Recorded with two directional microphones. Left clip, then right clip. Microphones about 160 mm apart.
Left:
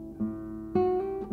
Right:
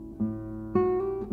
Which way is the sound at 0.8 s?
10° left (ahead or behind).